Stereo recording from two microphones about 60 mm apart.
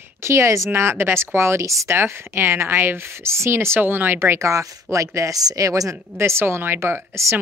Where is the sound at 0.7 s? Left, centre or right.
Right.